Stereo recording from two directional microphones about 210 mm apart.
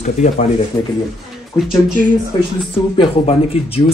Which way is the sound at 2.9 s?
25° left (ahead or behind).